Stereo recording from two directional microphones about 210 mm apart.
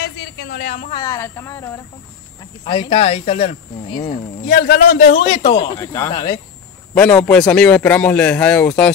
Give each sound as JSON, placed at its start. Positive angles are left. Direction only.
{"t": 0.0, "sound": "a sound", "side_deg": 50}
{"t": 0.9, "sound": "speech", "side_deg": 15}
{"t": 2.6, "sound": "speech", "side_deg": 25}
{"t": 4.5, "sound": "a man's voice", "side_deg": 45}
{"t": 5.8, "sound": "speech", "side_deg": 15}
{"t": 7.0, "sound": "a man's voice", "side_deg": 5}